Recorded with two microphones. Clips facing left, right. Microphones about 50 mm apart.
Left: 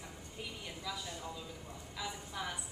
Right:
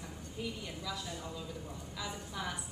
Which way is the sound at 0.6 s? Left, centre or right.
Centre.